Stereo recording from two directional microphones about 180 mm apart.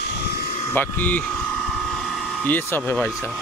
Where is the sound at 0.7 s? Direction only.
10° left (ahead or behind).